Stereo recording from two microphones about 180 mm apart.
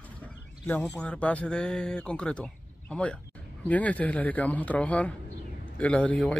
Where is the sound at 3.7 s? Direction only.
10° left (ahead or behind).